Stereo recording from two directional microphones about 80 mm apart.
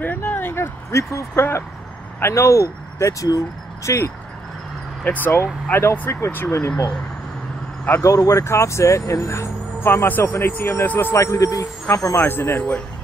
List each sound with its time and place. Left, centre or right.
0.0 s a sound: left
2.1 s speech: left
5.0 s speech: left
8.0 s speech: left
10.0 s speech: left
11.1 s speech: left